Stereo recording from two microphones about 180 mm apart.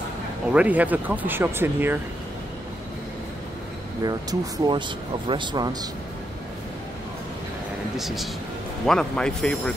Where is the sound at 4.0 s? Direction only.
20° right (ahead or behind).